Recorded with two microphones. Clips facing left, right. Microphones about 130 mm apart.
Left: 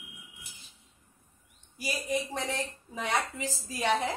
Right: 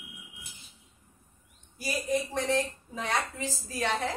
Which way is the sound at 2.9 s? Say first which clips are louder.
Left 3 dB; 15° left (ahead or behind).